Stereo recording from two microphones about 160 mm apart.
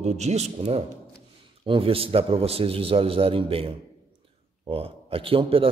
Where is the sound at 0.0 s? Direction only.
45° right (ahead or behind).